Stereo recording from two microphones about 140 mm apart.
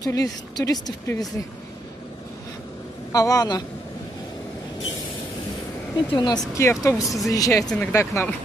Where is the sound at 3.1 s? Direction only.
25° left (ahead or behind).